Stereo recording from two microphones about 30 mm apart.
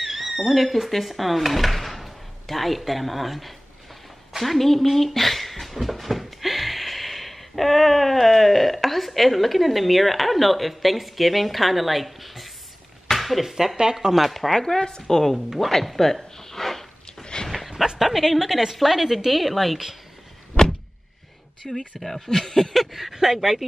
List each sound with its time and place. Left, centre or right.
0.0 s a sound: centre
0.7 s a woman's voice: centre
14.0 s speech: right
14.5 s speech: centre
14.8 s a woman's voice: left
15.3 s a woman's voice: centre
15.8 s a sound: centre
17.2 s a sound: left
17.9 s a woman's voice: centre
21.6 s speech: centre
22.8 s speech: centre